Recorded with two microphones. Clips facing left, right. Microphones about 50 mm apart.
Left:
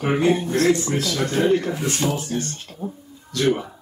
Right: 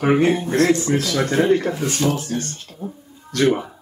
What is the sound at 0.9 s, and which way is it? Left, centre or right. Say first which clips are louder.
Speech: right 3 dB; right.